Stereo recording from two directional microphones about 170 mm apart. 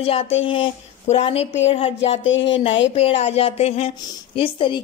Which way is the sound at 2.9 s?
35° left (ahead or behind).